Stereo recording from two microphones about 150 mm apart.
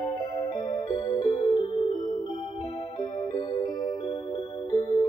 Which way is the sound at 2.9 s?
30° left (ahead or behind).